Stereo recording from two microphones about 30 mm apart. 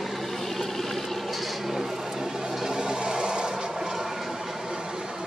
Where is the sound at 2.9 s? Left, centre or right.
Right.